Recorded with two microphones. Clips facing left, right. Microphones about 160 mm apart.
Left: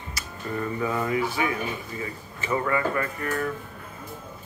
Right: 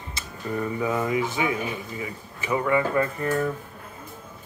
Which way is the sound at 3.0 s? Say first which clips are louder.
Right 4 dB; 25° right (ahead or behind).